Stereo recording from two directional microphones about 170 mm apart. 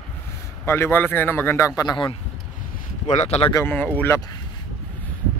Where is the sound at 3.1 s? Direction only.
40° left (ahead or behind).